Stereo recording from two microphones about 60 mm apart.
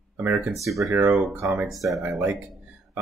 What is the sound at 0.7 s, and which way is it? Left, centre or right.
Speech, centre.